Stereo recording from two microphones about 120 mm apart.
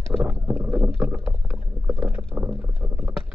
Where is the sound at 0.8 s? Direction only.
5° right (ahead or behind).